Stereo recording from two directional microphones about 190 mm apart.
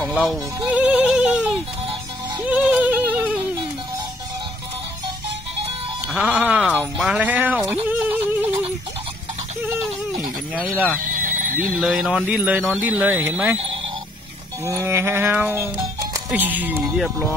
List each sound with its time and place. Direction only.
0.0 s speech: 5° left (ahead or behind)
0.7 s yodeling: 5° right (ahead or behind)
2.3 s music: 5° right (ahead or behind)
6.1 s music: 5° right (ahead or behind)
6.7 s speech: centre (ahead or behind)
10.5 s music: 5° right (ahead or behind)
11.1 s neigh: 45° right (ahead or behind)
11.8 s speech: 5° right (ahead or behind)
12.3 s music: 10° right (ahead or behind)
14.6 s music: 15° right (ahead or behind)